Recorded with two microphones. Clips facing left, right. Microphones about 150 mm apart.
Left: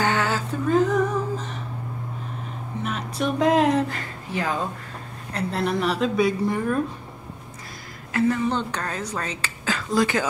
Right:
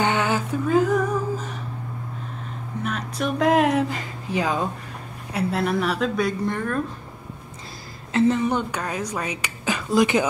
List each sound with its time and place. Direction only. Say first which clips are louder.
0.0 s a sound: right 1 dB; 20° right (ahead or behind)
0.7 s music: even; 5° right (ahead or behind)
2.8 s a woman's voice: even; centre (ahead or behind)
3.9 s speech: right 3 dB; 15° right (ahead or behind)
5.3 s a woman's voice: right 2 dB; 5° right (ahead or behind)
8.1 s speech: right 2 dB; 25° right (ahead or behind)